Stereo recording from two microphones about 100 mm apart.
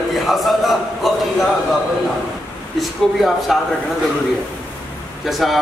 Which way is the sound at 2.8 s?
Centre (ahead or behind).